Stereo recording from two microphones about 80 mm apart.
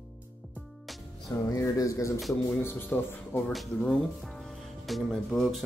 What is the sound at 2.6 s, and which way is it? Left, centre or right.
Speech, left.